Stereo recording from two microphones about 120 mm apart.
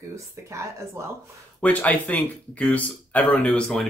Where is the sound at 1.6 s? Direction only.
10° left (ahead or behind).